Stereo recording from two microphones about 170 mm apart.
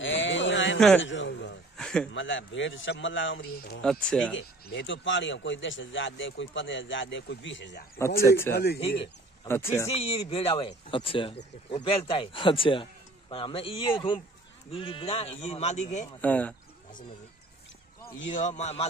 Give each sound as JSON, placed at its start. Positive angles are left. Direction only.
{"t": 0.0, "sound": "a sound", "side_deg": 90}
{"t": 1.8, "sound": "a sound", "side_deg": 5}
{"t": 2.1, "sound": "a man's voice", "side_deg": 90}
{"t": 3.8, "sound": "speech", "side_deg": 5}
{"t": 4.3, "sound": "a man's voice", "side_deg": 90}
{"t": 8.5, "sound": "speech", "side_deg": 15}
{"t": 9.8, "sound": "speech", "side_deg": 35}
{"t": 16.2, "sound": "speech", "side_deg": 10}
{"t": 18.3, "sound": "a man's voice", "side_deg": 45}